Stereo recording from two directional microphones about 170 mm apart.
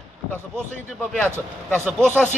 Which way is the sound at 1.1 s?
5° left (ahead or behind).